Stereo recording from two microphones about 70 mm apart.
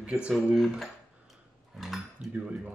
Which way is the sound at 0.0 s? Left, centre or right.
Centre.